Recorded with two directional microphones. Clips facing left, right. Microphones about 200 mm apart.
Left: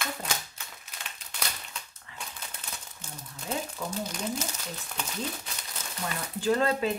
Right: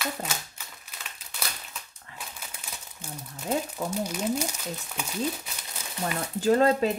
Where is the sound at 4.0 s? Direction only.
10° right (ahead or behind).